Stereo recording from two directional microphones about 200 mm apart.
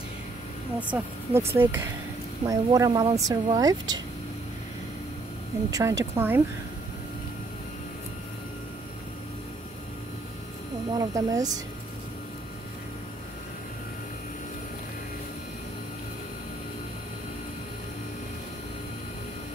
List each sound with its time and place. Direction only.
0.7 s speech: 5° right (ahead or behind)
5.7 s speech: 15° right (ahead or behind)
10.9 s speech: 15° right (ahead or behind)